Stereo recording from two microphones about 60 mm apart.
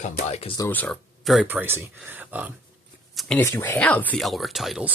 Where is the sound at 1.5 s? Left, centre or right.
Right.